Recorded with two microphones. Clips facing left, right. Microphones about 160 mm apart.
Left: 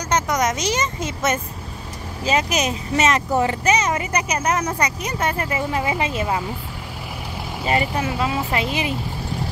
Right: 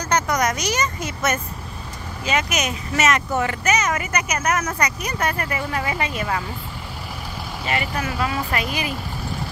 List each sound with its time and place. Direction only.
0.1 s a sound: 20° left (ahead or behind)
2.2 s speech: 30° left (ahead or behind)
7.6 s speech: 30° left (ahead or behind)